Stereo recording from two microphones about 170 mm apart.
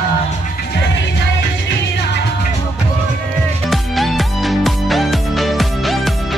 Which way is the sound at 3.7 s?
Centre (ahead or behind).